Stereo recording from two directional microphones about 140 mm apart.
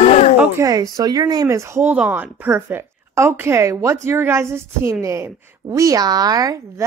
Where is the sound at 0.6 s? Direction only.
25° right (ahead or behind).